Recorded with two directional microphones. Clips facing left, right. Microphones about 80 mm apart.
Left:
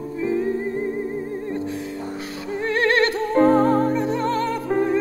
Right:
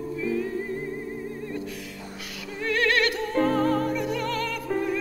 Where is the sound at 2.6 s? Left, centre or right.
Left.